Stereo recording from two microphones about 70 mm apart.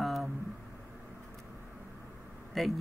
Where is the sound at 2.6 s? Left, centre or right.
Centre.